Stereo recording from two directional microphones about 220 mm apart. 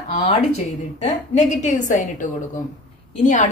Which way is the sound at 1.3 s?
35° left (ahead or behind).